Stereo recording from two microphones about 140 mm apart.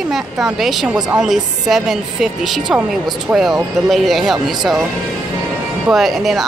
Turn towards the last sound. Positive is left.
turn(degrees=0)  # may be behind; listen again after turning